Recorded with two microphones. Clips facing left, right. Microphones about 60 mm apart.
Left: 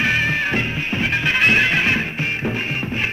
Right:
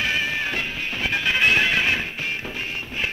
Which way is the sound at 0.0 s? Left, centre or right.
Left.